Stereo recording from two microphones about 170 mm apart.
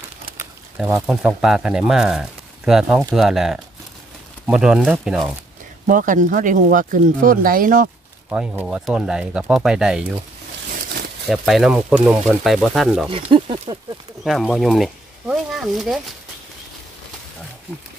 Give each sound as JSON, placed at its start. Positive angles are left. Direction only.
{"t": 0.7, "sound": "speech", "side_deg": -10}
{"t": 5.9, "sound": "speech", "side_deg": -50}
{"t": 8.6, "sound": "speech", "side_deg": -5}
{"t": 11.2, "sound": "speech", "side_deg": 0}
{"t": 13.1, "sound": "speech", "side_deg": -30}
{"t": 14.2, "sound": "speech", "side_deg": 0}